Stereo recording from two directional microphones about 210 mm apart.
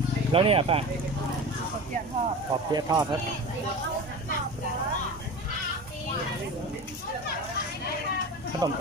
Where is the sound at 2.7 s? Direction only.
15° right (ahead or behind).